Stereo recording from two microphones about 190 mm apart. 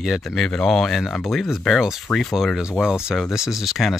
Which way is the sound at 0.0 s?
Centre (ahead or behind).